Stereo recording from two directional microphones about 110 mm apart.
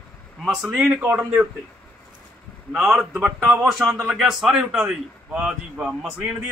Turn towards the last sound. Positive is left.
turn(degrees=-15)  # may be behind; listen again after turning